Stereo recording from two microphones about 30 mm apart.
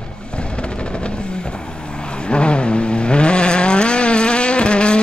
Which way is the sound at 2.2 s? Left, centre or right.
Left.